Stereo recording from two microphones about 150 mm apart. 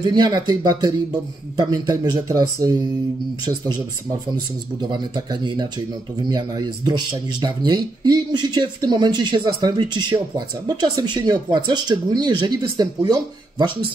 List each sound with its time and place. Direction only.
0.0 s speech: 30° right (ahead or behind)
4.9 s speech: 30° right (ahead or behind)